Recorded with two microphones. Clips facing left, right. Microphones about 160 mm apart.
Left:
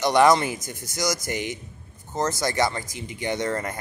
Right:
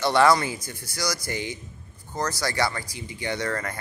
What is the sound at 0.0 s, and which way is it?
Speech, 15° left (ahead or behind).